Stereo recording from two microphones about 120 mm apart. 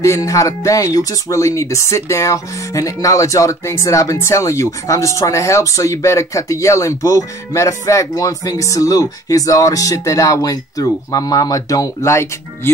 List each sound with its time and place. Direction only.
0.0 s speech: 25° left (ahead or behind)